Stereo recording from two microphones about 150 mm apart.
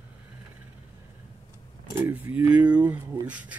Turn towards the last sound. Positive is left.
turn(degrees=-10)  # may be behind; listen again after turning